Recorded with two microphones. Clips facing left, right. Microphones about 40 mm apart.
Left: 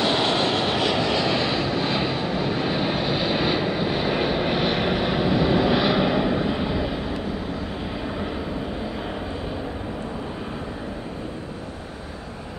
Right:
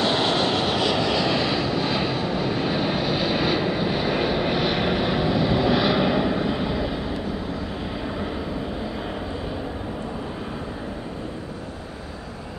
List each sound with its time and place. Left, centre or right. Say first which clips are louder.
0.0 s vehicle: even; centre